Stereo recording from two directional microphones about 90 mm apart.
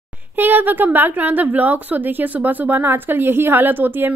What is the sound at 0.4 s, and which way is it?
Speech, 20° right (ahead or behind).